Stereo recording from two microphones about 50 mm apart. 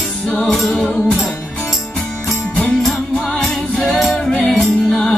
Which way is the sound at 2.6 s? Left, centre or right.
Centre.